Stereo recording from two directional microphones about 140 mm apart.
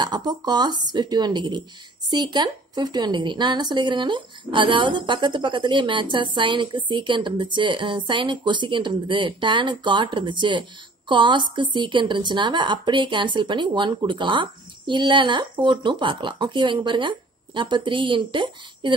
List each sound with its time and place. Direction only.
0.0 s a woman's voice: 30° right (ahead or behind)